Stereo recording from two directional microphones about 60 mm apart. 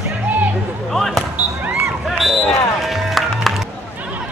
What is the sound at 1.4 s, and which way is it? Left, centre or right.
Basketball bounce, centre.